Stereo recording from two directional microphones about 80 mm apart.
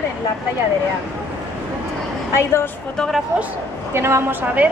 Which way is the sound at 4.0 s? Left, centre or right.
Right.